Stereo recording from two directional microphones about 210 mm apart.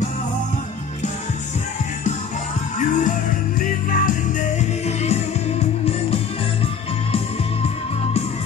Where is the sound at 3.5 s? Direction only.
40° left (ahead or behind).